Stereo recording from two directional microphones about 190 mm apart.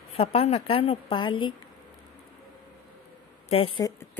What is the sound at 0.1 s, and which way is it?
A woman's voice, 30° left (ahead or behind).